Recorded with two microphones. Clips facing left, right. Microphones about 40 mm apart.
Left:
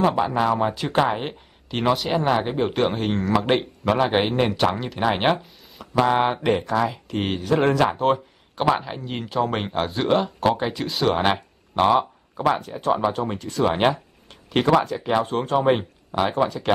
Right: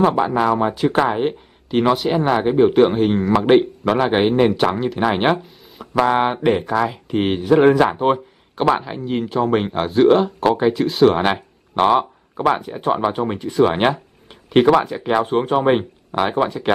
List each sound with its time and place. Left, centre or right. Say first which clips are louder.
0.2 s speech: right 3 dB; centre
11.8 s speech: right 3 dB; centre